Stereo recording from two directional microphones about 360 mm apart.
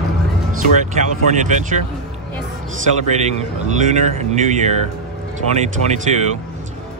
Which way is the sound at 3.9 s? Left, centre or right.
Centre.